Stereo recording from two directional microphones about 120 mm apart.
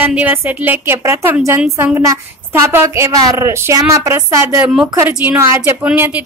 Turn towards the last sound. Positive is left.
turn(degrees=-20)  # may be behind; listen again after turning